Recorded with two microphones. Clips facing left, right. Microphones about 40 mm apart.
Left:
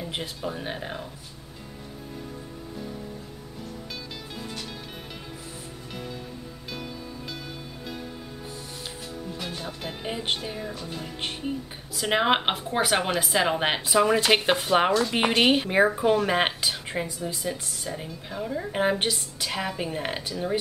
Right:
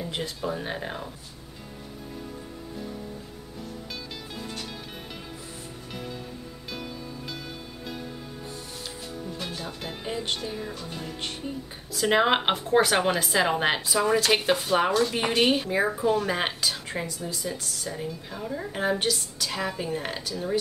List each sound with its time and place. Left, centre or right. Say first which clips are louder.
0.4 s speech: right 1 dB; centre
4.4 s music: even; centre
7.8 s music: even; centre
9.1 s music: even; centre
10.0 s music: left 1 dB; centre
10.6 s a woman's voice: left 1 dB; centre
13.8 s a woman's voice: left 5 dB; left
15.7 s speech: left 3 dB; left
16.3 s a woman's voice: left 3 dB; left
16.9 s a woman's voice: left 2 dB; centre
18.7 s a woman's voice: left 1 dB; left